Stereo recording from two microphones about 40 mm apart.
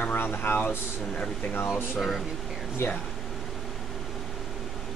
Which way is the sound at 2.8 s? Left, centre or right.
Left.